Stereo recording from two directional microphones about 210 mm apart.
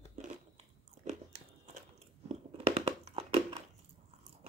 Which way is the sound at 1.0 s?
30° right (ahead or behind).